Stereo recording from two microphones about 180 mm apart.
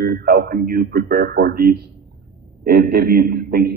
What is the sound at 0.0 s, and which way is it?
Speech, 60° right (ahead or behind).